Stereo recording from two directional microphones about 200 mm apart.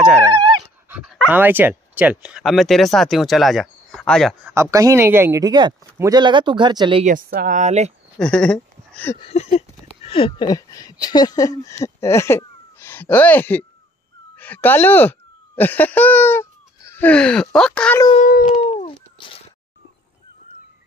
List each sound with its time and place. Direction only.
0.8 s dog: 5° right (ahead or behind)
1.3 s speech: 10° right (ahead or behind)
4.5 s speech: 15° right (ahead or behind)
7.2 s speech: 45° right (ahead or behind)
8.2 s a sound: 5° left (ahead or behind)
9.2 s speech: 30° left (ahead or behind); by 18.0 s 5° left (ahead or behind)
18.2 s a sound: 35° left (ahead or behind)